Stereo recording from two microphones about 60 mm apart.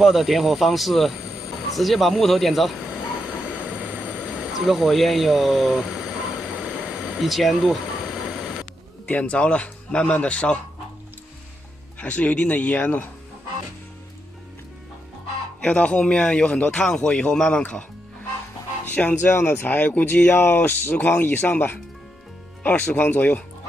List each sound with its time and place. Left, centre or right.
0.0 s speech: centre
2.8 s train: centre
4.2 s a sound: centre
4.6 s speech: centre
6.4 s train: centre
7.2 s speech: centre
8.0 s a sound: centre
9.0 s a man's voice: left
12.0 s a man's voice: left
15.6 s a man's voice: left
19.0 s a man's voice: left